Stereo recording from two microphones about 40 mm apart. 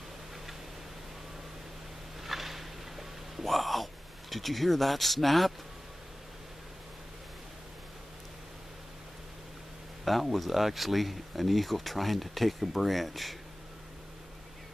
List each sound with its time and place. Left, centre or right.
2.2 s a sound: centre
3.4 s speech: centre
10.0 s speech: centre